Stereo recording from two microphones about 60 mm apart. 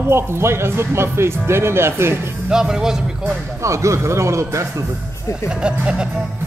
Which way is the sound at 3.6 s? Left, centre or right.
Right.